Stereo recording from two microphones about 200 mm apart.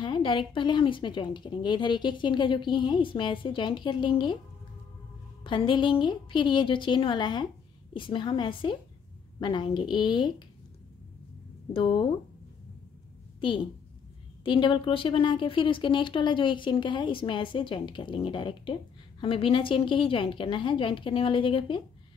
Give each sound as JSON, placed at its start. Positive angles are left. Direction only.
{"t": 0.0, "sound": "speech", "side_deg": 25}
{"t": 5.4, "sound": "speech", "side_deg": 25}
{"t": 11.7, "sound": "speech", "side_deg": 25}
{"t": 14.4, "sound": "speech", "side_deg": 25}